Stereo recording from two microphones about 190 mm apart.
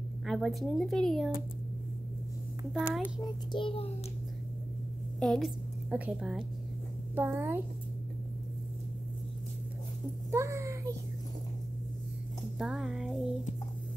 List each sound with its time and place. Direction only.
0.3 s speech: centre (ahead or behind)
2.7 s speech: centre (ahead or behind)
3.2 s a child's voice: 25° left (ahead or behind)
5.2 s speech: 5° left (ahead or behind)
5.9 s a woman's voice: 10° right (ahead or behind)
10.3 s a sound: 15° right (ahead or behind)
12.5 s speech: centre (ahead or behind)